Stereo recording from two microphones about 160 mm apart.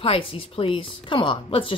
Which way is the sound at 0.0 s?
35° left (ahead or behind).